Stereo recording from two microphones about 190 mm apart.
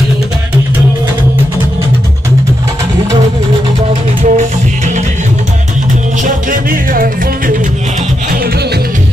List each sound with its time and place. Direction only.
4.2 s music: 40° right (ahead or behind)
6.2 s music: 45° right (ahead or behind)